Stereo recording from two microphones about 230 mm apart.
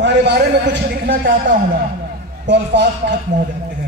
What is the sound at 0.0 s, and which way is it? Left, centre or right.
Speech, right.